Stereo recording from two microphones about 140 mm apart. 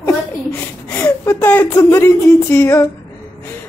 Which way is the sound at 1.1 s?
20° left (ahead or behind).